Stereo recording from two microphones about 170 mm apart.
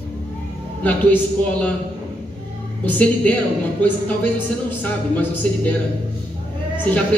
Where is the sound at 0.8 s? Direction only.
10° left (ahead or behind).